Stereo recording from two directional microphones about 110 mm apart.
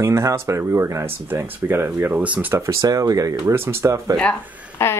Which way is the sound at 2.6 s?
30° right (ahead or behind).